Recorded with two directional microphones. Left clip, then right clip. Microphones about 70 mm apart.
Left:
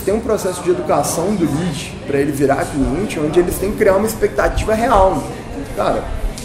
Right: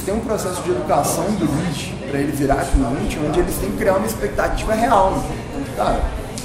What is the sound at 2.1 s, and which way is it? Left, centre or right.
A man's voice, left.